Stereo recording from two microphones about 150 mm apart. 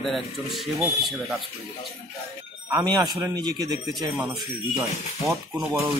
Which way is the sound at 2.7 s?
20° right (ahead or behind).